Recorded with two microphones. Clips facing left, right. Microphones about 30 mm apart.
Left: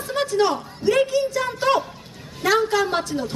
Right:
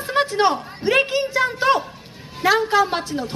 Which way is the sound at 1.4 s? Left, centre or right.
Right.